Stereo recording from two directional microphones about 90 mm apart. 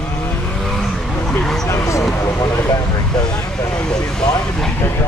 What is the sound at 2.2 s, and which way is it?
Vehicle, 30° left (ahead or behind).